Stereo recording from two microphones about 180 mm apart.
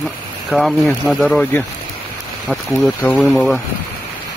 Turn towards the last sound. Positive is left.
turn(degrees=0)  # may be behind; listen again after turning